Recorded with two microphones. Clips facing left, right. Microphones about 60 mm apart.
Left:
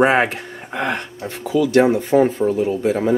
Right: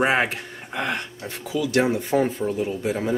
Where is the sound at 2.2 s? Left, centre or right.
Centre.